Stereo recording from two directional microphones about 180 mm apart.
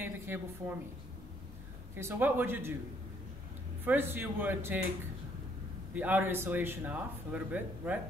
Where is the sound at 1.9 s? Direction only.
10° right (ahead or behind).